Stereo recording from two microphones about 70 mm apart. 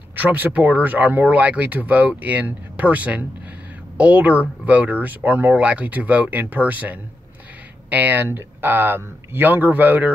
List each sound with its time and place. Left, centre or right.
0.1 s speech: right